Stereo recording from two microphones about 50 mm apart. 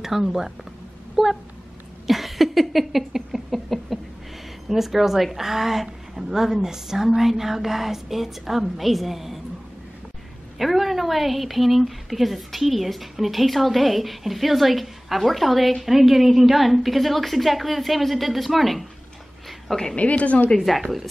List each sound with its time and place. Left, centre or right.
0.0 s a woman's voice: centre
1.1 s a sound: centre
4.6 s a woman's voice: centre
10.6 s a woman's voice: centre
20.0 s a woman's voice: left
20.5 s a woman's voice: centre